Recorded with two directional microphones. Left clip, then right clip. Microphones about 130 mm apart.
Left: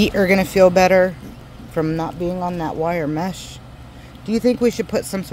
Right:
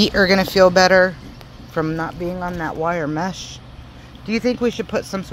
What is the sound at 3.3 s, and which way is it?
Speech, 65° left (ahead or behind).